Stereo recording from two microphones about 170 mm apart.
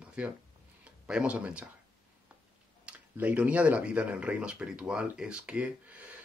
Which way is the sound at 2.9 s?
10° right (ahead or behind).